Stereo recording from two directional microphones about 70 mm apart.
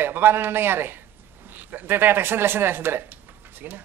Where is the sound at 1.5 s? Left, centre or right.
Right.